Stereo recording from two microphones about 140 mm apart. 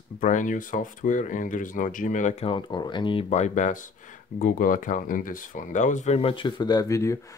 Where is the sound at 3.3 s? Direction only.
60° left (ahead or behind).